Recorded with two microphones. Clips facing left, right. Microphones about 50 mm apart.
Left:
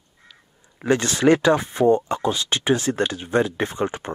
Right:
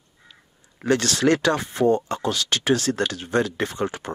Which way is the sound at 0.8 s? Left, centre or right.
Left.